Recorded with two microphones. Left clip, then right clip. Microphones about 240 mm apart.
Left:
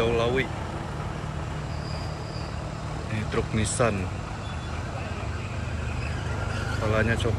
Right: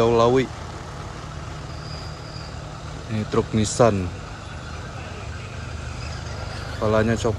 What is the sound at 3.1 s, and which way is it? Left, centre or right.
Speech, right.